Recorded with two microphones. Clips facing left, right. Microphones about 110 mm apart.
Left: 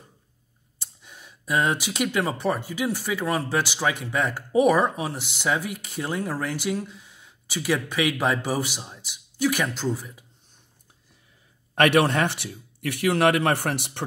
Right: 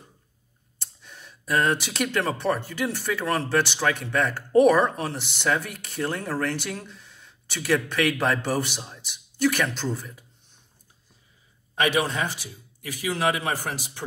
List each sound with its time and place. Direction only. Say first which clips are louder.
0.7 s speech: right 1 dB; 10° left (ahead or behind)
11.7 s a man's voice: left 5 dB; 60° left (ahead or behind)